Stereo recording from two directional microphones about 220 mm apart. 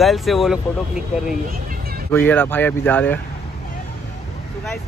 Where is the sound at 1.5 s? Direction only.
40° right (ahead or behind).